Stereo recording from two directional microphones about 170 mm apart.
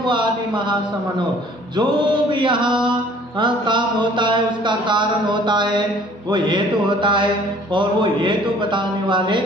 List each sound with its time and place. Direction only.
0.1 s a man's voice: 25° right (ahead or behind)
1.8 s a man's voice: 25° right (ahead or behind)